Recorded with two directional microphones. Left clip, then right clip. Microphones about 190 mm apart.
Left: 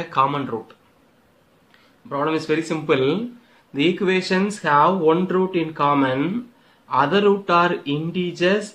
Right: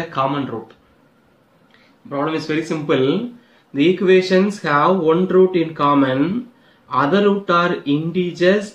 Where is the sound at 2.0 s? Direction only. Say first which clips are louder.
Even; 45° left (ahead or behind).